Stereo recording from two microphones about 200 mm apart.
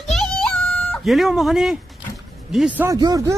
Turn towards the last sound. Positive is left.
turn(degrees=-20)  # may be behind; listen again after turning